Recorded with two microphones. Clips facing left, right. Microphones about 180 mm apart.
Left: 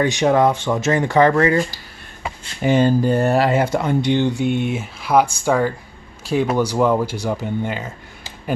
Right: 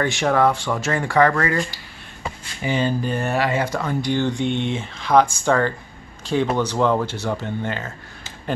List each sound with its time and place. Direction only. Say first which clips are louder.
0.0 s speech: left 3 dB; 20° left (ahead or behind)
2.6 s speech: left 6 dB; 45° left (ahead or behind); by 4.3 s 20° left (ahead or behind)
4.3 s speech: left 2 dB; 5° left (ahead or behind)